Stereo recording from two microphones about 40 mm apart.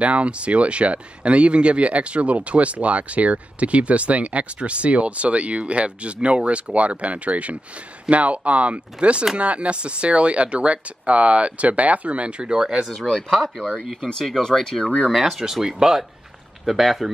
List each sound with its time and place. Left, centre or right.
0.0 s speech: right
13.0 s speech: centre
14.8 s speech: left
15.0 s speech: centre